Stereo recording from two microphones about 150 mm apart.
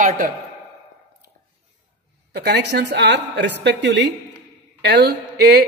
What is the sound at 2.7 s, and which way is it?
Speech, 85° right.